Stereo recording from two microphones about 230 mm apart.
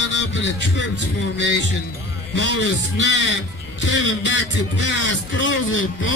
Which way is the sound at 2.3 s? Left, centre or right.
Left.